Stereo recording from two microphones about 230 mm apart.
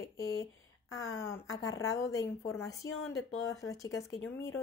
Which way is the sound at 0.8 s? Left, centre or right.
Left.